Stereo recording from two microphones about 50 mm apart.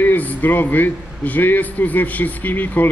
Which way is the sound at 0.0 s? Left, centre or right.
Left.